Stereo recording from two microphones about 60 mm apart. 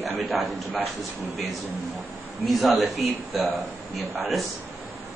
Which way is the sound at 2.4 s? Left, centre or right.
Centre.